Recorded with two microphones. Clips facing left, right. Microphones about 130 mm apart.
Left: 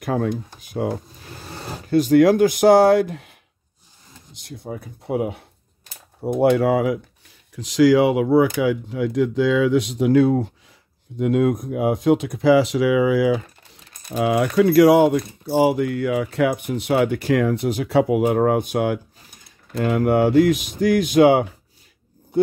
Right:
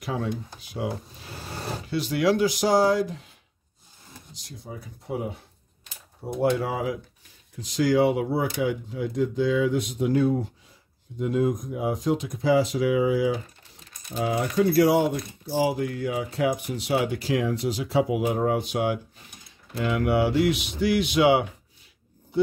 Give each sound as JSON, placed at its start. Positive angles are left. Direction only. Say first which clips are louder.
{"t": 0.0, "sound": "speech", "louder": "left 7 dB", "side_deg": 55}
{"t": 6.2, "sound": "speech", "louder": "left 8 dB", "side_deg": 80}
{"t": 7.5, "sound": "speech", "louder": "left 7 dB", "side_deg": 90}
{"t": 14.0, "sound": "speech", "louder": "left 7 dB", "side_deg": 80}